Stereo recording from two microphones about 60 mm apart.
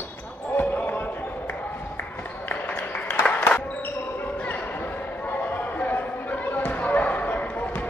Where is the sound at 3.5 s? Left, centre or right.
Left.